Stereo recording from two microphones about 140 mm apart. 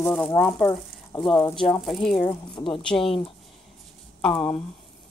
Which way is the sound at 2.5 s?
35° left (ahead or behind).